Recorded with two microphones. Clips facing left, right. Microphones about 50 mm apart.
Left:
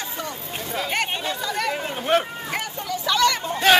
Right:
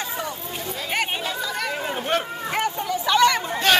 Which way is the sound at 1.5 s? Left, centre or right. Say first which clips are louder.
Left 1 dB; centre.